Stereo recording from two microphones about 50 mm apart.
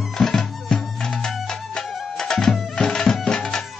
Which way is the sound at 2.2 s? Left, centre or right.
Centre.